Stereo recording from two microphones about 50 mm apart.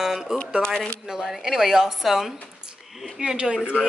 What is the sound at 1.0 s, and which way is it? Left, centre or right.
Speech, centre.